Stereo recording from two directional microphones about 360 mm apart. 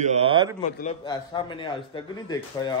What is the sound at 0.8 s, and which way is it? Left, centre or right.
Speech, centre.